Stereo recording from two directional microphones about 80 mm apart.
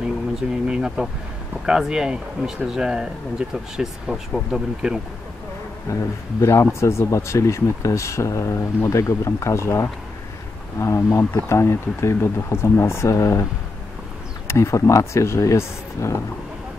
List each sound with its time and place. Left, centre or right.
0.0 s a sound: centre
1.7 s speech: centre
6.4 s speech: left
14.5 s speech: left